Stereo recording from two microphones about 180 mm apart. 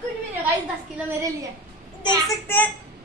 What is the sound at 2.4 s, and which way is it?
Speech, 10° left (ahead or behind).